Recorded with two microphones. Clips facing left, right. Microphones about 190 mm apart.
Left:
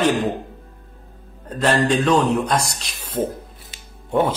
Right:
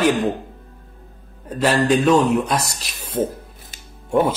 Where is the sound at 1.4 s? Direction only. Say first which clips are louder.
Right 1 dB; 5° right (ahead or behind).